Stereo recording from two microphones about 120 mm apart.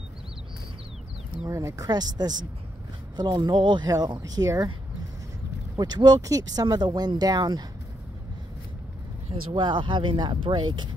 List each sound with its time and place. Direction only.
1.5 s speech: 25° right (ahead or behind)
5.8 s speech: 35° right (ahead or behind)
9.3 s speech: 45° right (ahead or behind)